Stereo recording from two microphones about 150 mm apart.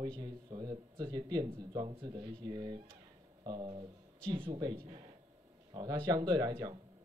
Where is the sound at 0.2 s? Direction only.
25° right (ahead or behind).